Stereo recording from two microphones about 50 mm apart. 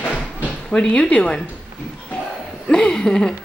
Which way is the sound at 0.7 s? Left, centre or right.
Centre.